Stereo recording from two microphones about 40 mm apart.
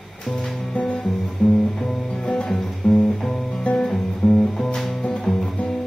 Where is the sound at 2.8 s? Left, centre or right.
Left.